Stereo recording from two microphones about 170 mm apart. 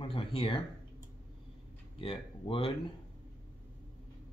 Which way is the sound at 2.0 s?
30° left (ahead or behind).